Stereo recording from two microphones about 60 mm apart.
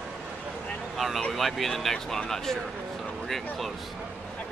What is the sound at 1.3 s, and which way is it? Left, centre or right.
Speech, centre.